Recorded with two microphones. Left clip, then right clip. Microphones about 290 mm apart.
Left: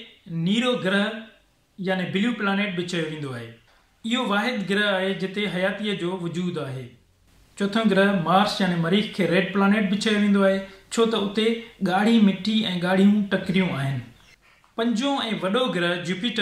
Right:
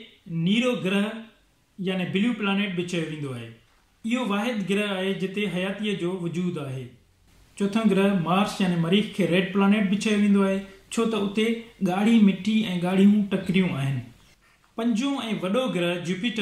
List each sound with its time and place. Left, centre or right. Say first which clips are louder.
0.4 s speech: left 1 dB; centre